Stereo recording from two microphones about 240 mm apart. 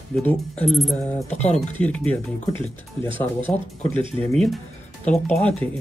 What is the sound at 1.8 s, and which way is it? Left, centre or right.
Speech, centre.